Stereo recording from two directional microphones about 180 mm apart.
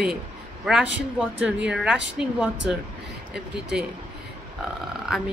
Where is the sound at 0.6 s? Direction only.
Centre (ahead or behind).